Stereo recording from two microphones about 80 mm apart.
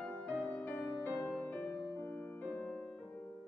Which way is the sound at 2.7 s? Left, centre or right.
Centre.